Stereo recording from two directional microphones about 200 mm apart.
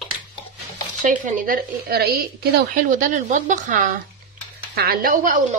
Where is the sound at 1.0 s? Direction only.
40° right (ahead or behind).